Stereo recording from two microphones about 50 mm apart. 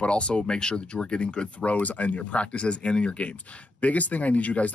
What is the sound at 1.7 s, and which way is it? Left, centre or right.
Speech, left.